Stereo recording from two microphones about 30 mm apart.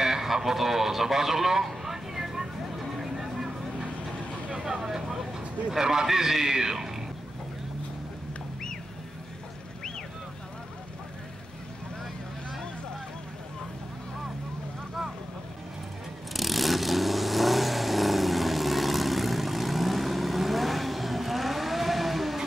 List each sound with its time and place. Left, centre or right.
0.0 s speech: centre
1.9 s a sound: centre
4.6 s a man's voice: centre
16.3 s vehicle: centre